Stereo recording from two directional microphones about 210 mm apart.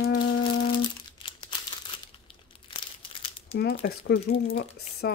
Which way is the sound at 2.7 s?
25° left (ahead or behind).